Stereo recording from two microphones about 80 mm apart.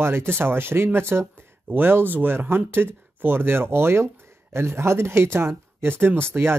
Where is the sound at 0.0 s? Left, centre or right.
Right.